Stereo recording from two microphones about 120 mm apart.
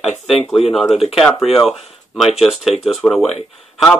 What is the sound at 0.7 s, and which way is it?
Speech, centre (ahead or behind).